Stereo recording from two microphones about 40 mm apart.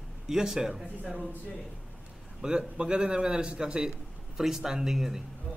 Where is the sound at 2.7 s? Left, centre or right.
Right; by 5.2 s centre.